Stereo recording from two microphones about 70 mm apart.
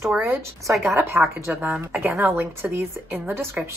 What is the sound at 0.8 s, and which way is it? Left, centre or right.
Speech, right.